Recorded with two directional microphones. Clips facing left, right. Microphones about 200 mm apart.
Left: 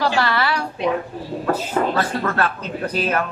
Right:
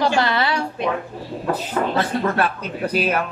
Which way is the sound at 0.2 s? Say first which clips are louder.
Even; 20° right (ahead or behind).